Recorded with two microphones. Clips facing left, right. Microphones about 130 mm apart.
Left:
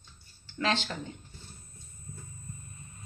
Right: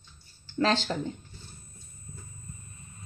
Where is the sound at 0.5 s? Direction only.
35° right (ahead or behind).